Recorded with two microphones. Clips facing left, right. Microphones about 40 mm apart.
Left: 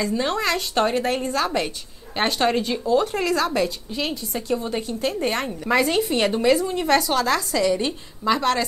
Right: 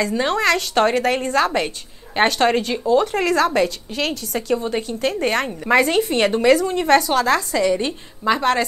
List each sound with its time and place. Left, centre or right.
0.1 s a woman's voice: right
2.7 s speech: right
3.0 s a woman's voice: right
4.6 s a woman's voice: right
4.8 s a woman's voice: right